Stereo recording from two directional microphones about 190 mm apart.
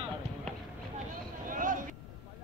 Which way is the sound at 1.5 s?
45° right (ahead or behind).